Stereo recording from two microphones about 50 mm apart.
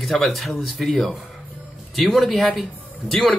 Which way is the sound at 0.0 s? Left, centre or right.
Centre.